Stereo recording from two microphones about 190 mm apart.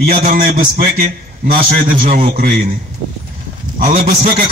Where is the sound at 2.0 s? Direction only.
45° right (ahead or behind).